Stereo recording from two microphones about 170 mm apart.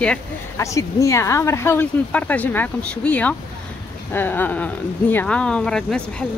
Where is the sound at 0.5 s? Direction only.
20° left (ahead or behind).